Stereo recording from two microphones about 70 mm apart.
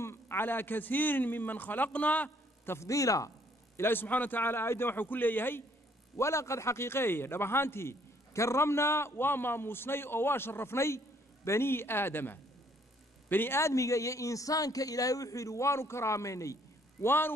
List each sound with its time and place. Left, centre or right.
0.0 s a man's voice: left
2.6 s a man's voice: left
2.9 s a man's voice: left
3.7 s a man's voice: left
6.1 s a man's voice: left
13.6 s a man's voice: left
17.0 s a man's voice: left